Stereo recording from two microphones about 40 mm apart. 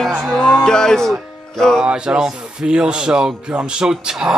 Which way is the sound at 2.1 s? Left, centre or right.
Centre.